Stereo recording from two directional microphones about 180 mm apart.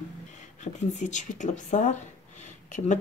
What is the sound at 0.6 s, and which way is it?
Speech, 40° left (ahead or behind).